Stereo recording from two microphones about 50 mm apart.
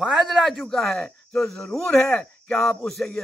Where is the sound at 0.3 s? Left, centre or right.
Centre.